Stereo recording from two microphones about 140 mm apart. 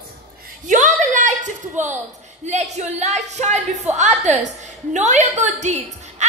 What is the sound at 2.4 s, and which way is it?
A woman's voice, 55° right (ahead or behind).